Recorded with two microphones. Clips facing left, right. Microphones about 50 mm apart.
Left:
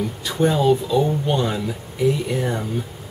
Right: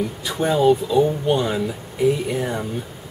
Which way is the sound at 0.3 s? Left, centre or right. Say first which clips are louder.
Right 1 dB; centre.